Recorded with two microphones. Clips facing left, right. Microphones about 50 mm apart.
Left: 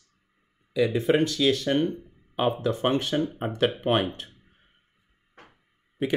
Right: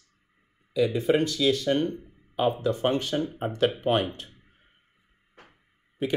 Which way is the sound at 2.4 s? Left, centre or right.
Left.